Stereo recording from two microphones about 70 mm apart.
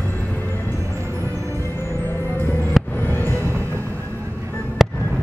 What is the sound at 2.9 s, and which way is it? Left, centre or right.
Music, left.